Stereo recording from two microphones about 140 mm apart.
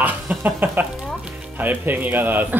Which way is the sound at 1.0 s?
10° right (ahead or behind).